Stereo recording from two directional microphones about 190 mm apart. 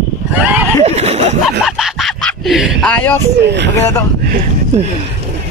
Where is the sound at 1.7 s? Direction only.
Centre (ahead or behind).